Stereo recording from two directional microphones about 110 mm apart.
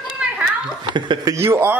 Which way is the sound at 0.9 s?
45° right (ahead or behind).